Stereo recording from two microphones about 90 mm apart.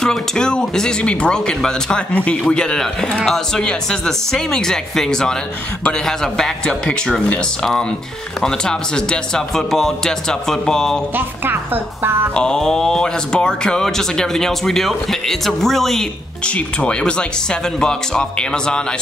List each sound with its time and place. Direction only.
0.0 s speech: 5° left (ahead or behind)
11.1 s a woman's voice: 25° right (ahead or behind)
12.4 s speech: 10° left (ahead or behind)